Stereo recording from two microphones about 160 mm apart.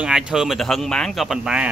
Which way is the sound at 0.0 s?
5° right (ahead or behind).